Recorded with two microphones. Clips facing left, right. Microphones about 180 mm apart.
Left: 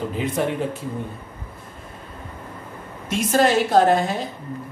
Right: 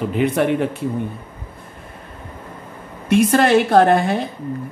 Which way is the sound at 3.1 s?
60° right (ahead or behind).